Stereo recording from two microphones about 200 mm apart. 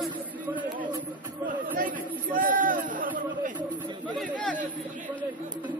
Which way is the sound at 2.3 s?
45° right (ahead or behind).